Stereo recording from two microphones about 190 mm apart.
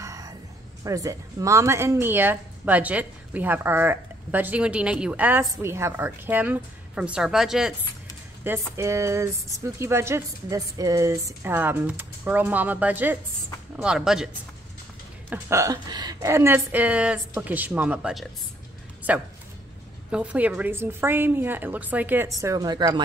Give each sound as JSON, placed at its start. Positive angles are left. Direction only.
{"t": 0.0, "sound": "music", "side_deg": -20}
{"t": 0.8, "sound": "a woman's voice", "side_deg": -15}
{"t": 8.5, "sound": "a woman's voice", "side_deg": -15}